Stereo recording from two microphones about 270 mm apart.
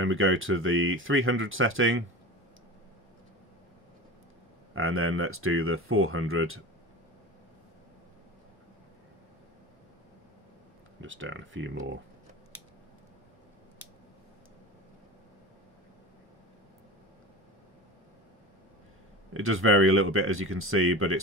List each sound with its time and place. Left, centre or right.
0.0 s speech: right
4.7 s speech: right
11.0 s speech: right
19.3 s speech: right